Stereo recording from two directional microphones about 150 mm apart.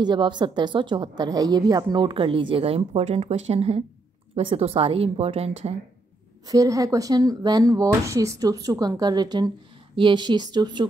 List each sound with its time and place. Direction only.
0.0 s a woman's voice: 30° right (ahead or behind)
6.4 s speech: 25° right (ahead or behind)